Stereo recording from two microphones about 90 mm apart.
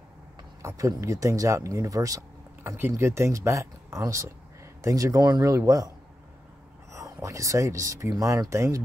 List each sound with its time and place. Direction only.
0.6 s speech: 35° right (ahead or behind)
2.6 s speech: 25° right (ahead or behind)
6.9 s speech: 35° right (ahead or behind)